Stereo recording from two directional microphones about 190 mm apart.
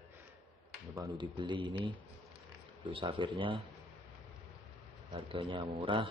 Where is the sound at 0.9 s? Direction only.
20° right (ahead or behind).